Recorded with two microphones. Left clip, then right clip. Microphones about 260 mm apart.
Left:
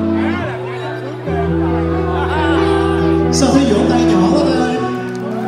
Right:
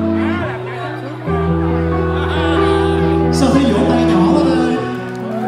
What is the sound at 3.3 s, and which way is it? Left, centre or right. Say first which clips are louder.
Music: left 1 dB; right.